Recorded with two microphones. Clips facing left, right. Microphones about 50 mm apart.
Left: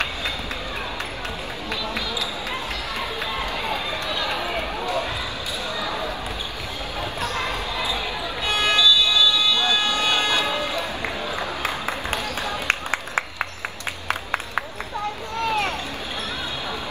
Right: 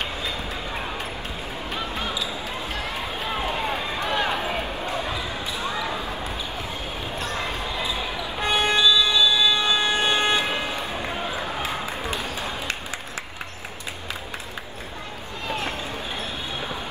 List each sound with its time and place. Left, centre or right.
4.1 s run: right
7.2 s basketball bounce: left
8.7 s a sound: right
10.2 s vehicle: right
12.6 s a sound: left
15.4 s basketball bounce: left